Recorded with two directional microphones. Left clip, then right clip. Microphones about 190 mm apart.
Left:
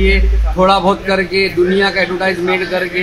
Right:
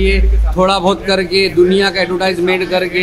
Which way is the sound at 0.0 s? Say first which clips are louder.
Left 1 dB; 30° right (ahead or behind).